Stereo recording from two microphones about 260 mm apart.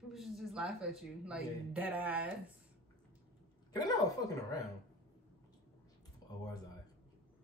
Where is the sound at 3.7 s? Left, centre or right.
Centre.